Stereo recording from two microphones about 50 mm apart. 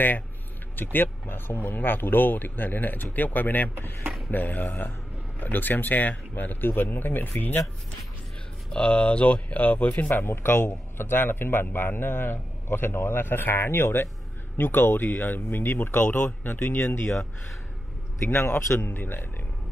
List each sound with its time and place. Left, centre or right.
0.7 s speech: left
8.7 s speech: left
10.2 s a man's voice: left